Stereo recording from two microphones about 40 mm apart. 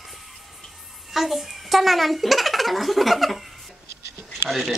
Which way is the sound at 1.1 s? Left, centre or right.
Centre.